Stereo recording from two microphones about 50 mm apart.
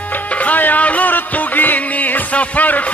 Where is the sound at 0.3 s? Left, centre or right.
Left.